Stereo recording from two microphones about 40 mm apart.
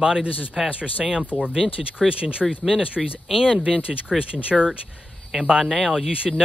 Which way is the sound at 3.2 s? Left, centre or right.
Centre.